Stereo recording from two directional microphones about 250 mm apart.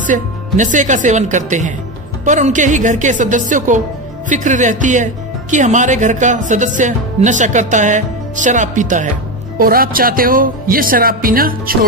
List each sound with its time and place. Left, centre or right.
0.0 s speech: right